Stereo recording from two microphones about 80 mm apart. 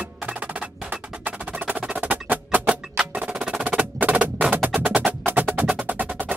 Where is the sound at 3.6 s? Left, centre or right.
Right.